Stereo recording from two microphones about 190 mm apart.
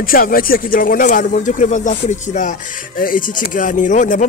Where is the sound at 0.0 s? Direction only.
50° left (ahead or behind).